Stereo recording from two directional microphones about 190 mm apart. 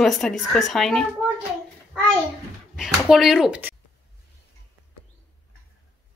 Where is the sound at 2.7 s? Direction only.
Centre (ahead or behind).